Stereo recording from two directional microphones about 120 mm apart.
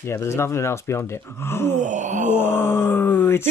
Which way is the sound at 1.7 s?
90° right.